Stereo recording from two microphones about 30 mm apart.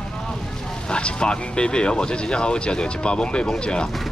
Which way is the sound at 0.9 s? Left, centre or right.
Left.